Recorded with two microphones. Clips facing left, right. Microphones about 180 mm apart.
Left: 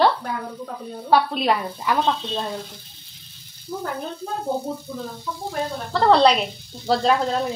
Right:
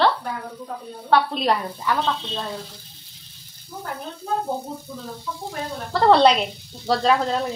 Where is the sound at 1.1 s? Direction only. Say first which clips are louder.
Left 1 dB; 5° left (ahead or behind).